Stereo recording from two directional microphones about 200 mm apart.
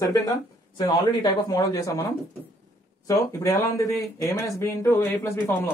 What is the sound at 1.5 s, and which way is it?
Speech, 15° left (ahead or behind).